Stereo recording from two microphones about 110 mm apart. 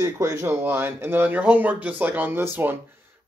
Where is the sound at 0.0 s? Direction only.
25° right (ahead or behind).